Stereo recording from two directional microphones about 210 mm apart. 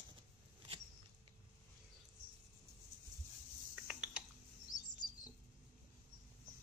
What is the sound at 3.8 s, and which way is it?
Typing, 5° right (ahead or behind).